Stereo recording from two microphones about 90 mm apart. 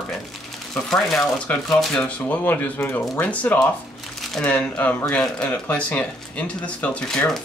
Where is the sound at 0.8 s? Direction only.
5° left (ahead or behind).